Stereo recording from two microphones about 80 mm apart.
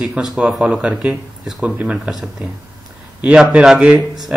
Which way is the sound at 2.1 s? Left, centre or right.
Centre.